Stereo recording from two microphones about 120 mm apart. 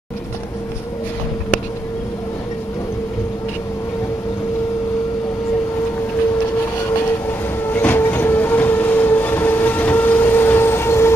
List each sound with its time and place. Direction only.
7.6 s train: 15° left (ahead or behind)